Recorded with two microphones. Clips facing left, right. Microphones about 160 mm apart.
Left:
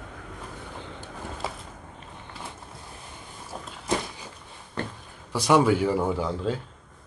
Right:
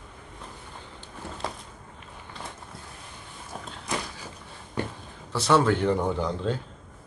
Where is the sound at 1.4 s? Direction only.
5° left (ahead or behind).